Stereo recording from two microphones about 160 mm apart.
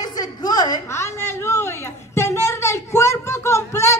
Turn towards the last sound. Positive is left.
turn(degrees=15)  # may be behind; listen again after turning